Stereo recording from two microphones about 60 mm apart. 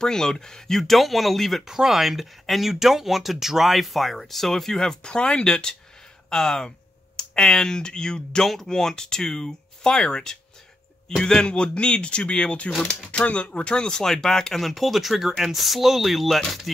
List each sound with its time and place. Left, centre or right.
0.0 s speech: centre
12.7 s speech: centre
13.1 s speech: left; by 16.7 s centre